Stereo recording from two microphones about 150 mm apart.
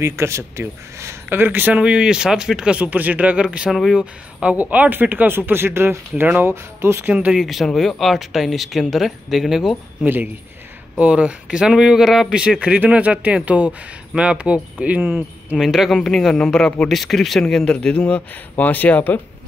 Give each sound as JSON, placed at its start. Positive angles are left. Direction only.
{"t": 0.0, "sound": "speech", "side_deg": -20}
{"t": 10.0, "sound": "a man's voice", "side_deg": -15}